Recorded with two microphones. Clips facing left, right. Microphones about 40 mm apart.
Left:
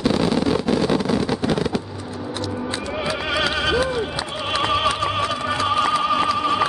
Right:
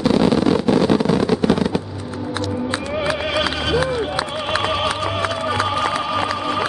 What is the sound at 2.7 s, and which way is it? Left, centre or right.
Music, centre.